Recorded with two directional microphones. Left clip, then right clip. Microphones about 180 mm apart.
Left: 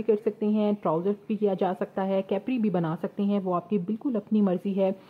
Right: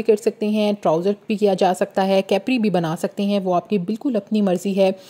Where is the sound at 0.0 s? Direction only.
25° right (ahead or behind).